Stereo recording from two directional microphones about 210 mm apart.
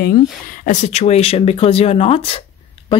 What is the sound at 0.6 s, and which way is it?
Speech, 35° left (ahead or behind).